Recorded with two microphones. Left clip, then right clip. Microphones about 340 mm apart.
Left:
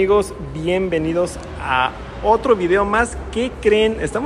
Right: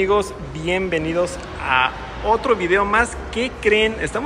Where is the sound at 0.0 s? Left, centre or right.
Centre.